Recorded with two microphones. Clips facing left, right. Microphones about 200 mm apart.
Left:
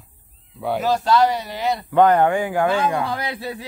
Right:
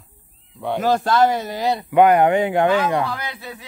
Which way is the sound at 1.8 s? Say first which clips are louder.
Right 1 dB; 10° right (ahead or behind).